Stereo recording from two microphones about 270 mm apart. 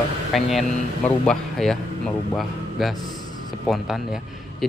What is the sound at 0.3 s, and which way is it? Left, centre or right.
A man's voice, centre.